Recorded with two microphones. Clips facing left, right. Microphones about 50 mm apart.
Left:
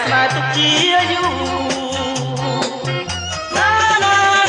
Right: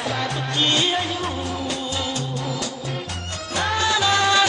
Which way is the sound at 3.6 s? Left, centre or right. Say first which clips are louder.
Left 8 dB; left.